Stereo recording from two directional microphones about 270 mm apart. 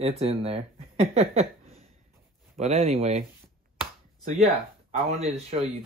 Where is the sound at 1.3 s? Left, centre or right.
Right.